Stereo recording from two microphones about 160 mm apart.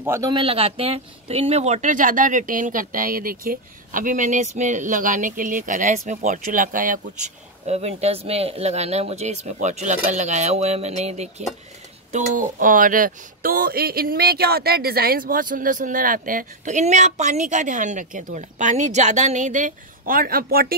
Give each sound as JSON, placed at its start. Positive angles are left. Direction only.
{"t": 0.0, "sound": "speech", "side_deg": -15}
{"t": 0.3, "sound": "speech", "side_deg": -35}
{"t": 7.6, "sound": "speech", "side_deg": -40}
{"t": 12.1, "sound": "speech", "side_deg": -55}